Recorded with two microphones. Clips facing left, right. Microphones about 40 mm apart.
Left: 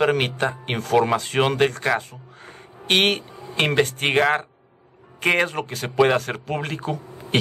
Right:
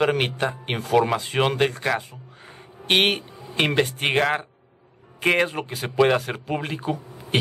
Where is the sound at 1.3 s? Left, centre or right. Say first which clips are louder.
Left 1 dB; centre.